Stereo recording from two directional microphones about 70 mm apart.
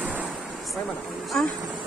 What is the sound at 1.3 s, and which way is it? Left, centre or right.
Speech, centre.